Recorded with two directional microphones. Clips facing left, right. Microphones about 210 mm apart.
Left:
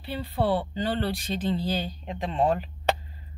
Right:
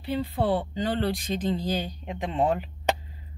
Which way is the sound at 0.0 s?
20° right (ahead or behind).